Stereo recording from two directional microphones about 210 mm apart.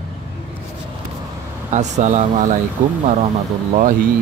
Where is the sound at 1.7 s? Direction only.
35° right (ahead or behind).